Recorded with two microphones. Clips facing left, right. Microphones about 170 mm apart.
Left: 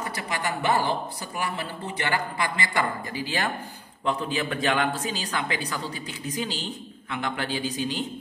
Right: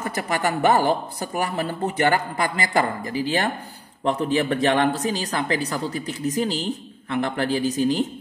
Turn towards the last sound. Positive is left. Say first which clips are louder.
# right 7 dB
turn(degrees=-40)  # may be behind; listen again after turning